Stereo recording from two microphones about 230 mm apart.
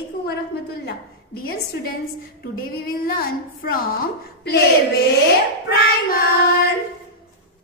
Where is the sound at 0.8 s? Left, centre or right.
Left.